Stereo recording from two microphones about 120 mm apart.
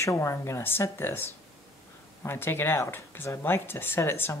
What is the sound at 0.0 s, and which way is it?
Speech, 25° left (ahead or behind).